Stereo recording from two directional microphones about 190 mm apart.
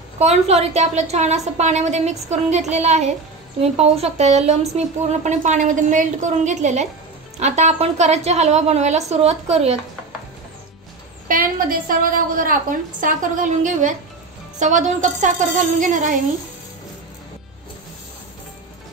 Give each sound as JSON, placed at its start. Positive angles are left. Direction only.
{"t": 0.2, "sound": "a woman's voice", "side_deg": -35}
{"t": 11.2, "sound": "a woman's voice", "side_deg": -45}